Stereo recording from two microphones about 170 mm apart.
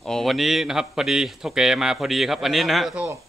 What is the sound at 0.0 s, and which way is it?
Speech, centre (ahead or behind).